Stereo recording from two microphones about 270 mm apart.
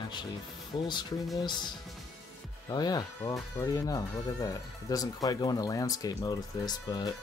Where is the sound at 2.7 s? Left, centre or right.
Centre.